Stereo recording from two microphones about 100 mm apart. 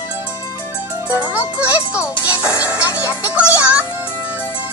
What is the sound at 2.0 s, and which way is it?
Music, 25° left (ahead or behind).